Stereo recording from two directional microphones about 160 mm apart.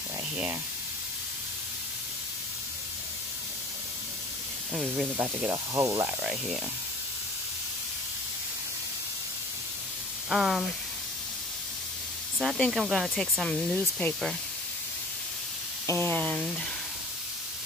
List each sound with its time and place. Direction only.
4.7 s speech: 5° right (ahead or behind)
10.3 s speech: centre (ahead or behind)
12.4 s speech: centre (ahead or behind)
15.9 s speech: 10° left (ahead or behind)